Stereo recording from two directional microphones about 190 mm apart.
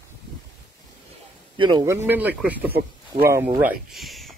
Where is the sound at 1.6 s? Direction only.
20° right (ahead or behind).